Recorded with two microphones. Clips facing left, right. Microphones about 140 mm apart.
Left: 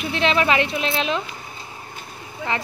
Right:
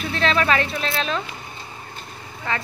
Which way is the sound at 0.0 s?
15° left (ahead or behind).